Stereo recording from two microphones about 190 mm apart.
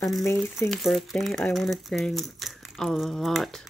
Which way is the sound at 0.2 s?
15° left (ahead or behind).